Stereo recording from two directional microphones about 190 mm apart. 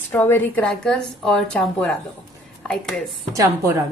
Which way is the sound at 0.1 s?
10° left (ahead or behind).